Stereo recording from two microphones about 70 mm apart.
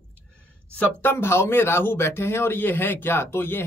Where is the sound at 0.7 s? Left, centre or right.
Left.